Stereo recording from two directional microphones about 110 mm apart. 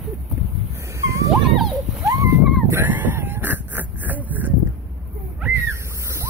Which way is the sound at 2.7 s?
15° right (ahead or behind).